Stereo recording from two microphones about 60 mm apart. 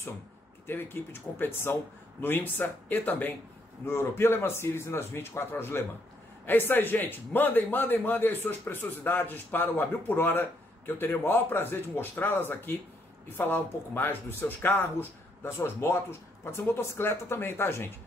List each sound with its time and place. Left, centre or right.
0.7 s a man's voice: left
3.8 s a man's voice: left